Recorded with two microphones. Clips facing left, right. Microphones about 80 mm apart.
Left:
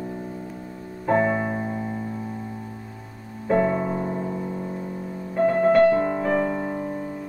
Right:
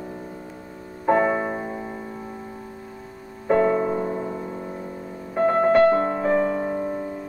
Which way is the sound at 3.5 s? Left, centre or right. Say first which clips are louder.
Right 2 dB; centre.